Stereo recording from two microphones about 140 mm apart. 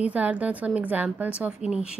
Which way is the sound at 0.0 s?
10° right (ahead or behind).